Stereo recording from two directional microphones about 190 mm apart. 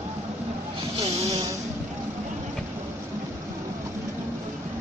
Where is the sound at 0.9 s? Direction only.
30° right (ahead or behind).